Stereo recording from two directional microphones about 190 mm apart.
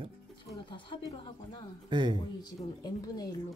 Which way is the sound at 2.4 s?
20° left (ahead or behind).